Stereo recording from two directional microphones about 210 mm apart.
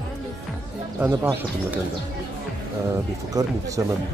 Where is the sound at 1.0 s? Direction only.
10° right (ahead or behind).